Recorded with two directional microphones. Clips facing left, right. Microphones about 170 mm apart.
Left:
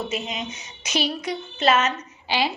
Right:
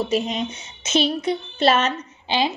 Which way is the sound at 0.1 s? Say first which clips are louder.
Right 7 dB; 35° right (ahead or behind).